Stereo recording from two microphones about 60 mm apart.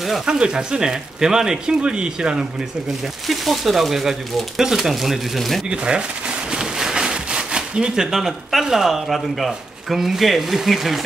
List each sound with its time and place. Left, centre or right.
0.0 s speech: centre
0.4 s speech: centre
3.3 s speech: centre
5.7 s speech: centre